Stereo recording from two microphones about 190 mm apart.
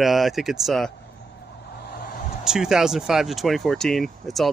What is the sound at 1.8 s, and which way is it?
Vehicle, 55° left (ahead or behind).